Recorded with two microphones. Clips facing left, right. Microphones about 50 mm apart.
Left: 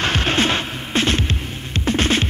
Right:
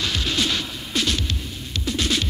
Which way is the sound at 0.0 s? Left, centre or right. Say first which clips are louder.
Left 6 dB; left.